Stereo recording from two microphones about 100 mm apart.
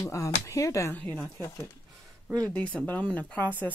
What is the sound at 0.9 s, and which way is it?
Speech, 15° left (ahead or behind).